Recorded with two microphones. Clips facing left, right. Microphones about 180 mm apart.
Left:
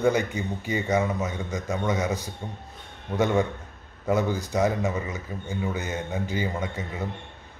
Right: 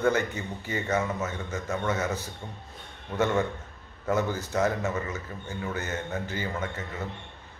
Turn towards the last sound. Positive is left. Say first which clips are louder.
# left 2 dB
turn(degrees=15)  # may be behind; listen again after turning